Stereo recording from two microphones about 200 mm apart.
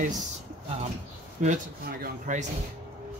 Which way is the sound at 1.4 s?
45° right (ahead or behind).